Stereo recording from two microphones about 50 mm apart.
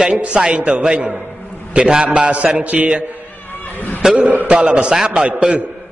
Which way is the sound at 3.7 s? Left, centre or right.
Left.